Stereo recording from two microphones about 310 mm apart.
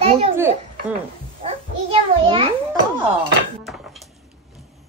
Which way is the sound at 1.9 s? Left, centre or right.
Centre.